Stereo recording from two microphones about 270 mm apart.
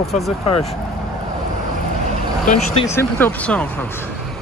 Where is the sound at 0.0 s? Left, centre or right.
Centre.